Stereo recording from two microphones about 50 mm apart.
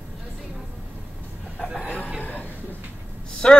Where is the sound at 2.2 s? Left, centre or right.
Left.